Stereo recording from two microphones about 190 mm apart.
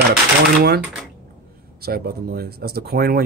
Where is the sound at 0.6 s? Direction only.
55° right (ahead or behind).